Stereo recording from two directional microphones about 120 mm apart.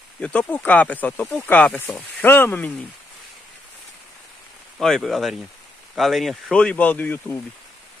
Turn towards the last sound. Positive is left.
turn(degrees=15)  # may be behind; listen again after turning